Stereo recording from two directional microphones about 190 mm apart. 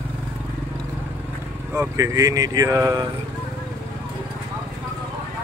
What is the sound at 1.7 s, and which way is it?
Speech, 15° right (ahead or behind).